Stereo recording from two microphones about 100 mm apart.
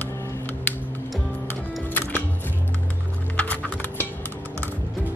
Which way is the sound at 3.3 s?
15° left (ahead or behind).